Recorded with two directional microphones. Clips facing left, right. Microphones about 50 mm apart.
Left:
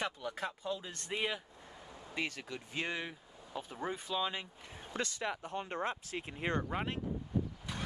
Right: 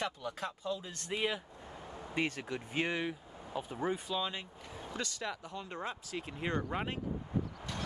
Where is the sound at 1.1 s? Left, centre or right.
Centre.